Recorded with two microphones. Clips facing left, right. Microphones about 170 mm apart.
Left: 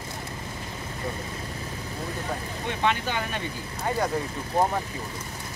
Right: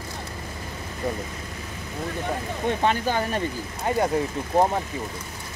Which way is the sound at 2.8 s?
40° right (ahead or behind).